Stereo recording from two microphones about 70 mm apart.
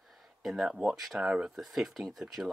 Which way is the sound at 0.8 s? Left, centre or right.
Centre.